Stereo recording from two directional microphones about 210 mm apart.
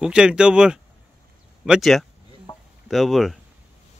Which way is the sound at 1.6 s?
Centre (ahead or behind).